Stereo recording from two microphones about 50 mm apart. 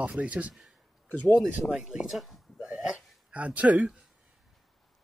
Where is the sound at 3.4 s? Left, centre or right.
Right.